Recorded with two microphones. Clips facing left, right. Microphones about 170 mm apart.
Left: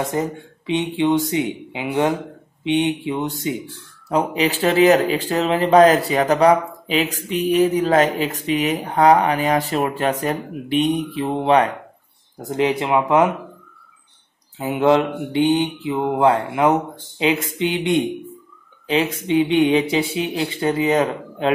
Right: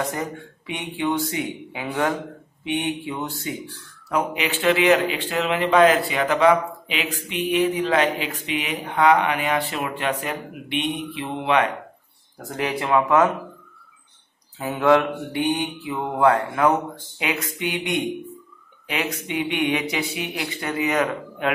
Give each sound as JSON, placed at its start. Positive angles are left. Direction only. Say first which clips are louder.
{"t": 0.0, "sound": "speech", "louder": "left 5 dB", "side_deg": 25}
{"t": 4.1, "sound": "speech", "louder": "left 5 dB", "side_deg": 30}
{"t": 12.4, "sound": "speech", "louder": "left 6 dB", "side_deg": 20}
{"t": 14.6, "sound": "speech", "louder": "left 2 dB", "side_deg": 25}